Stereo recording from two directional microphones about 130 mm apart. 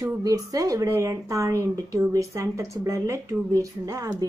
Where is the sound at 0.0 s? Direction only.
25° right (ahead or behind).